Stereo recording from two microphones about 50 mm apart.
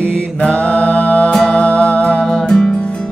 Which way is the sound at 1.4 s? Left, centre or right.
Left.